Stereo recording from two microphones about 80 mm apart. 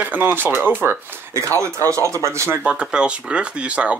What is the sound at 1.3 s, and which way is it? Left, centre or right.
Speech, right.